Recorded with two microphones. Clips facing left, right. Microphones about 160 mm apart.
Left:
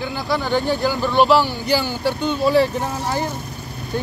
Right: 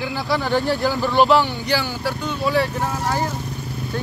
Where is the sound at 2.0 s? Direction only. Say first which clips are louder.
Left 4 dB; 30° left (ahead or behind).